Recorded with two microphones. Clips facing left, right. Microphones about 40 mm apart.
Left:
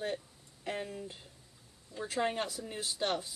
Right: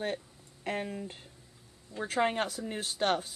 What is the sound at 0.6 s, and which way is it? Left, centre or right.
Speech, right.